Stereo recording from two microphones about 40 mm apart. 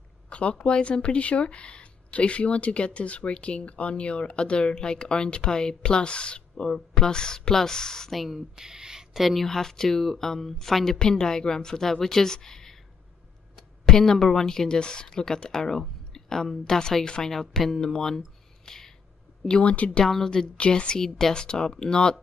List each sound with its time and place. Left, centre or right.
0.3 s speech: left
8.3 s speech: centre
9.2 s a woman's voice: centre
19.6 s speech: left